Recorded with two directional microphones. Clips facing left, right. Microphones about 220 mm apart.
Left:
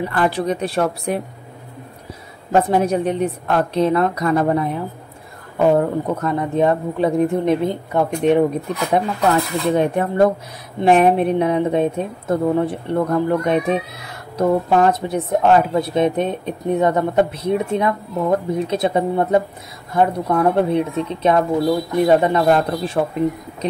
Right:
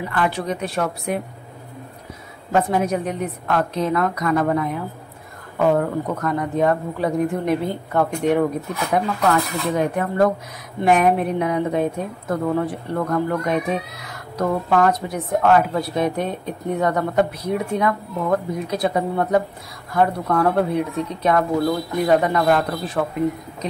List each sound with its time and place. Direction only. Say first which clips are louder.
0.1 s a woman's voice: left 2 dB; 35° left (ahead or behind)
2.5 s a woman's voice: left 3 dB; 30° left (ahead or behind)
5.8 s a woman's voice: left 3 dB; 25° left (ahead or behind)